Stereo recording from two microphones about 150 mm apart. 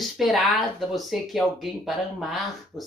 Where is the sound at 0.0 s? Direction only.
Centre (ahead or behind).